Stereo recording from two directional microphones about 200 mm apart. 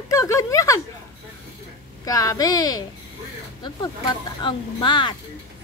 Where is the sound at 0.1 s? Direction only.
15° left (ahead or behind).